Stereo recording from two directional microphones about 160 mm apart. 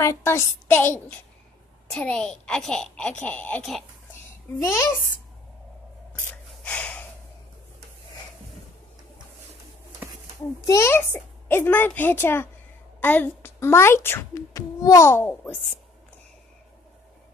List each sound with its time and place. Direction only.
0.0 s a child's voice: 15° left (ahead or behind)
4.3 s a child's voice: 15° left (ahead or behind)
6.1 s gasp: 10° left (ahead or behind)
10.7 s a child's voice: 15° left (ahead or behind)